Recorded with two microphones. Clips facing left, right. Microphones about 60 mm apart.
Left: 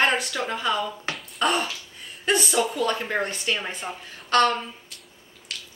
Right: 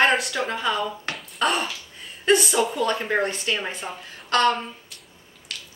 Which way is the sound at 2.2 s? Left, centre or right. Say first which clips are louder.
Right 3 dB; centre.